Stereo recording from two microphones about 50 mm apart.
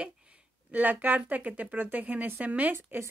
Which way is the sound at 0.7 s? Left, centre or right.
Right.